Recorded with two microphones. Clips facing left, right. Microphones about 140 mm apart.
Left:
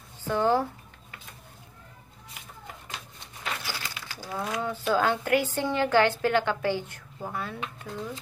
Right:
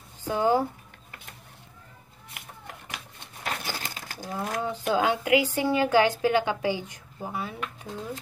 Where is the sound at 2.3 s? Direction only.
65° right (ahead or behind).